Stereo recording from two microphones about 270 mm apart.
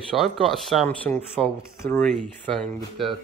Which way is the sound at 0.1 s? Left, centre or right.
Centre.